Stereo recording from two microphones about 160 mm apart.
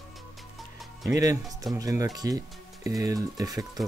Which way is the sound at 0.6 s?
Centre (ahead or behind).